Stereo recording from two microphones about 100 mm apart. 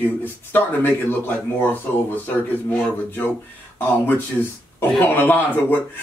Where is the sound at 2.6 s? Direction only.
20° left (ahead or behind).